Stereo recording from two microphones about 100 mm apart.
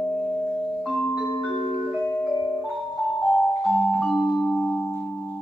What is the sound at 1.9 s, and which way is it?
Music, 10° left (ahead or behind).